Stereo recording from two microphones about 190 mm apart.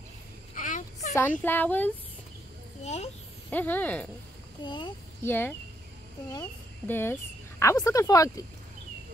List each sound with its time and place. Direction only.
0.6 s a sound: 40° left (ahead or behind)
1.1 s speech: 10° left (ahead or behind)
2.8 s a child's voice: 35° left (ahead or behind)
3.4 s speech: 10° left (ahead or behind)
4.6 s a child's voice: 25° left (ahead or behind)
5.2 s speech: 10° left (ahead or behind)
6.9 s speech: 10° left (ahead or behind)